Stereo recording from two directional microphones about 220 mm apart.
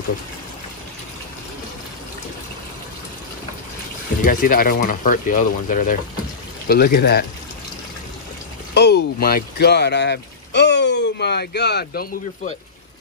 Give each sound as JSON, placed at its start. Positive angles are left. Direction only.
{"t": 4.2, "sound": "speech", "side_deg": 40}
{"t": 8.7, "sound": "speech", "side_deg": 50}